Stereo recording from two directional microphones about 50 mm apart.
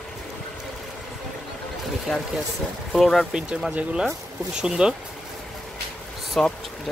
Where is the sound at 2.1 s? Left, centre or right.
Centre.